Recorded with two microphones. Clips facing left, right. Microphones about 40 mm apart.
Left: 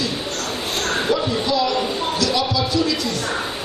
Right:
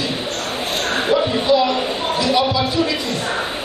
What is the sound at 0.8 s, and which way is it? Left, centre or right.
A man's voice, centre.